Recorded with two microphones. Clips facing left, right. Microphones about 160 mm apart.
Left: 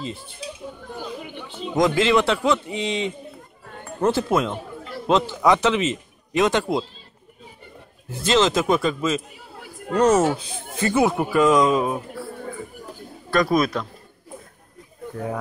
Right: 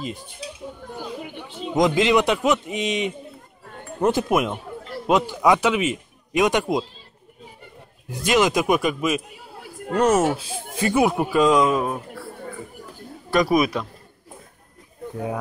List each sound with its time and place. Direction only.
0.0 s speech: 15° right (ahead or behind)
1.8 s a man's voice: 15° right (ahead or behind)
8.1 s speech: 15° right (ahead or behind)
11.6 s speech: centre (ahead or behind)
13.3 s speech: 15° right (ahead or behind)